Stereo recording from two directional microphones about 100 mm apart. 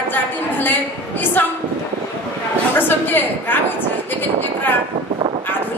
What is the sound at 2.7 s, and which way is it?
Speech, 20° left (ahead or behind).